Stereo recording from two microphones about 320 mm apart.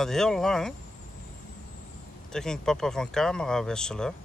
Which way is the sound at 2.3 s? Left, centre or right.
Centre.